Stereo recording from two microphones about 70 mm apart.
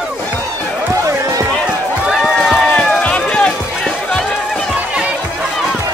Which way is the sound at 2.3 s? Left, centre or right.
Centre.